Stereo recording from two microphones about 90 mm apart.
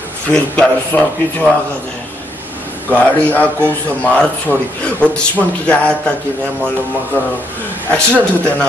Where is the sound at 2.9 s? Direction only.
15° left (ahead or behind).